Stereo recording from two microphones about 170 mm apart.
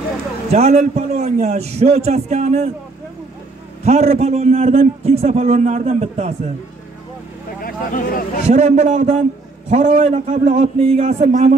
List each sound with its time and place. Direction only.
0.5 s a man's voice: 40° right (ahead or behind)
3.8 s a man's voice: 40° right (ahead or behind)
7.6 s speech: 55° left (ahead or behind)
8.5 s a man's voice: 40° right (ahead or behind)